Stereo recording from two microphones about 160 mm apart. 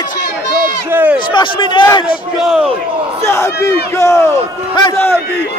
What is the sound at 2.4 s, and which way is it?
Speech, centre (ahead or behind).